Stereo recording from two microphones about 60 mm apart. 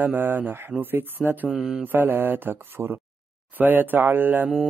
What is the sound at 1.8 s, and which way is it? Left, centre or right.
Speech, right.